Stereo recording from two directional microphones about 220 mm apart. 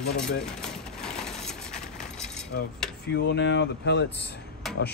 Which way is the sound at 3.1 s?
50° left (ahead or behind).